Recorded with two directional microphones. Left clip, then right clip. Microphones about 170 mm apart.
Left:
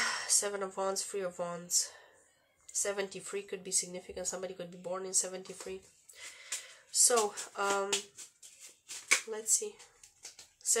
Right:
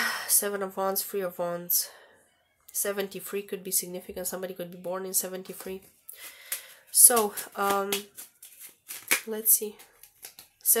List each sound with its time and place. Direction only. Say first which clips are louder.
0.0 s speech: right 4 dB; 45° right (ahead or behind)
9.3 s speech: right 4 dB; 50° right (ahead or behind)